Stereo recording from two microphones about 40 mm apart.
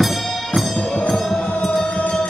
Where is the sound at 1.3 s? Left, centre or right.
Left.